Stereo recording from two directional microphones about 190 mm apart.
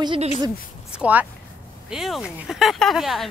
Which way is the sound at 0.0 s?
25° right (ahead or behind).